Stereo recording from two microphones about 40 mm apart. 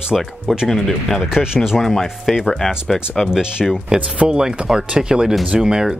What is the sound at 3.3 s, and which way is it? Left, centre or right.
Speech, centre.